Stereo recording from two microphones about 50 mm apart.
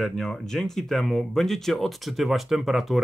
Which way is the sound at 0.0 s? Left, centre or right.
Centre.